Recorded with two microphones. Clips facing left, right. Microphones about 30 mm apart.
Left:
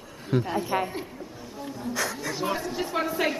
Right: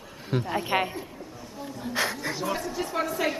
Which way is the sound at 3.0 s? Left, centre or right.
Centre.